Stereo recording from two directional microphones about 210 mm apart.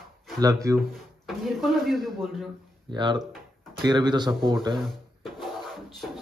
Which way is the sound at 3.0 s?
20° right (ahead or behind).